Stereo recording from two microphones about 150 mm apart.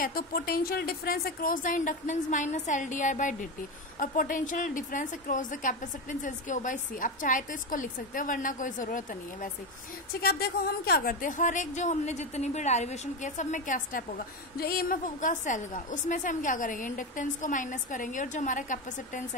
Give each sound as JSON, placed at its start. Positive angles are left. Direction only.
{"t": 0.0, "sound": "speech", "side_deg": 75}
{"t": 10.2, "sound": "speech", "side_deg": 90}